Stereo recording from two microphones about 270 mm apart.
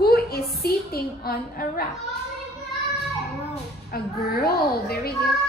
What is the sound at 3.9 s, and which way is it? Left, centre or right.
A woman's voice, left.